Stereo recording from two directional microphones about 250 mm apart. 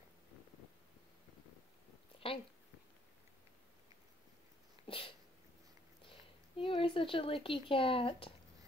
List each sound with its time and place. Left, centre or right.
2.1 s a sound: left
4.8 s sneeze: left
6.6 s speech: left